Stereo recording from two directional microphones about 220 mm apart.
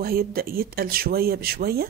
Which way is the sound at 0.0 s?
40° right (ahead or behind).